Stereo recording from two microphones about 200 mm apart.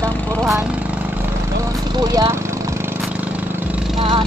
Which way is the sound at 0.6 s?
10° right (ahead or behind).